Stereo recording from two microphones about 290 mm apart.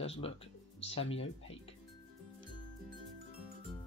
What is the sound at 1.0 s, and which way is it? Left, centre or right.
Speech, left.